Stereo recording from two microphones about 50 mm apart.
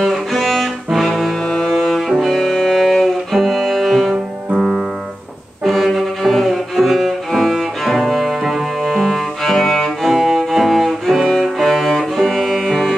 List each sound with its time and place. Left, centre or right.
0.0 s music: centre
5.6 s cello: centre
11.6 s music: centre